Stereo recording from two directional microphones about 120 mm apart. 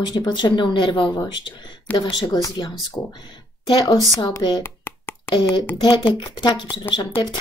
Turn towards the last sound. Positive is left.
turn(degrees=40)  # may be behind; listen again after turning